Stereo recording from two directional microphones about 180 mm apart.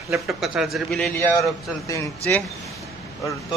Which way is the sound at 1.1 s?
15° left (ahead or behind).